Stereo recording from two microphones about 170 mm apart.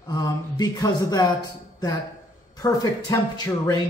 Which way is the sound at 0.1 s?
25° left (ahead or behind).